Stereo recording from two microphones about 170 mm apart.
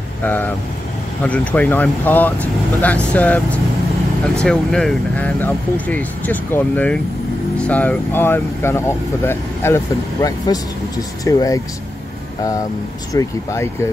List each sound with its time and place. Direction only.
0.2 s speech: 10° left (ahead or behind)
13.1 s speech: 20° left (ahead or behind)